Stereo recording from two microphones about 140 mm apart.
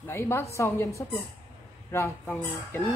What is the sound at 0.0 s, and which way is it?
A woman's voice, 15° left (ahead or behind).